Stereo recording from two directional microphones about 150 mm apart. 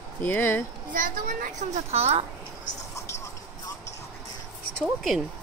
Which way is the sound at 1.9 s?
45° right (ahead or behind).